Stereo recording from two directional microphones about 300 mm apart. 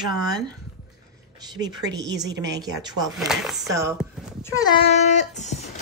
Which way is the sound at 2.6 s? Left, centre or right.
Centre.